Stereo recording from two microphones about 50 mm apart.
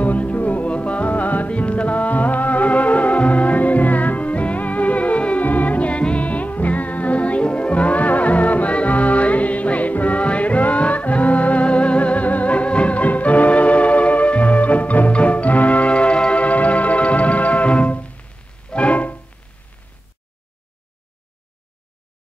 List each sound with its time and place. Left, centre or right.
0.0 s music: left